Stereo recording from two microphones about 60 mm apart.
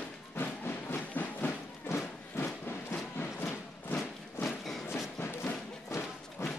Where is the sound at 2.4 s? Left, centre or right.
Left.